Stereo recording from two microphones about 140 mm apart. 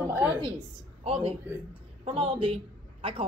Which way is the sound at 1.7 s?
40° right (ahead or behind).